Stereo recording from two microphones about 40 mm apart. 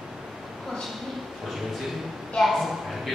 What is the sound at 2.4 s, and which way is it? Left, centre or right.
Speech, centre.